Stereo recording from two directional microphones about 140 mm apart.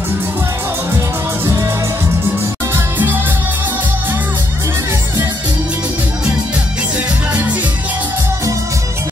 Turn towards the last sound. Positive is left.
turn(degrees=-10)  # may be behind; listen again after turning